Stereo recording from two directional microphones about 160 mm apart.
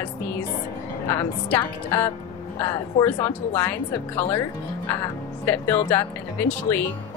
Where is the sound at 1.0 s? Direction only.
15° left (ahead or behind).